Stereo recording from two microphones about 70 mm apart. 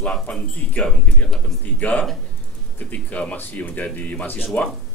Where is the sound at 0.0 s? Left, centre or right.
Centre.